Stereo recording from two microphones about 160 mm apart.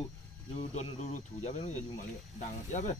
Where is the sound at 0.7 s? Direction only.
45° left (ahead or behind).